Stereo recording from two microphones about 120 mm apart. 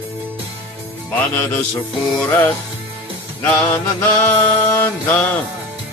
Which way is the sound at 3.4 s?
10° left (ahead or behind).